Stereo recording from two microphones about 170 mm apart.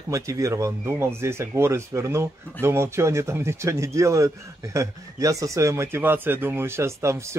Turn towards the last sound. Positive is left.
turn(degrees=-15)  # may be behind; listen again after turning